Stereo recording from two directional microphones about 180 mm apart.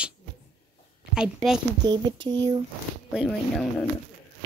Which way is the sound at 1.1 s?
5° right (ahead or behind).